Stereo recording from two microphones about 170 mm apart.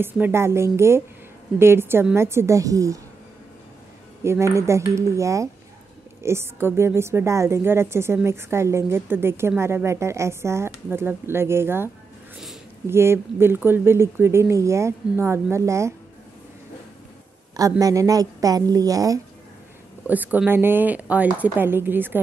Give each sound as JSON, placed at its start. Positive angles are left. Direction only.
{"t": 0.0, "sound": "a woman's voice", "side_deg": -15}
{"t": 4.2, "sound": "a woman's voice", "side_deg": -15}
{"t": 17.6, "sound": "a woman's voice", "side_deg": -20}
{"t": 20.1, "sound": "a woman's voice", "side_deg": -10}